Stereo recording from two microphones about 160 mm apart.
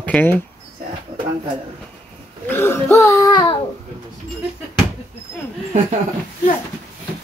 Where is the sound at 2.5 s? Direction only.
15° left (ahead or behind).